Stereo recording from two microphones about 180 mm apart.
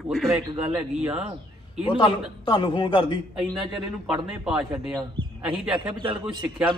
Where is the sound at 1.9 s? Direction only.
30° left (ahead or behind).